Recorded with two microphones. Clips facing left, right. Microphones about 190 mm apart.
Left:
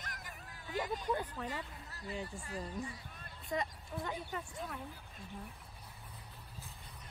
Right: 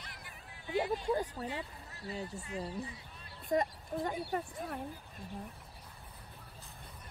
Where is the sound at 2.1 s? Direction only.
40° right (ahead or behind).